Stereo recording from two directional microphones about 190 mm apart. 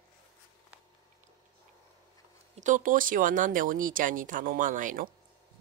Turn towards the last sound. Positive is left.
turn(degrees=-45)  # may be behind; listen again after turning